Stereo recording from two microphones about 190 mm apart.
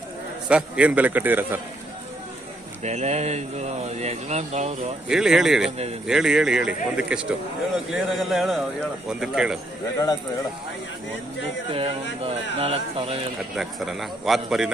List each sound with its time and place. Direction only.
0.5 s a man's voice: 5° right (ahead or behind)
2.8 s speech: 35° right (ahead or behind)
5.0 s a man's voice: 5° right (ahead or behind)
11.7 s speech: 30° right (ahead or behind)
13.6 s a man's voice: centre (ahead or behind)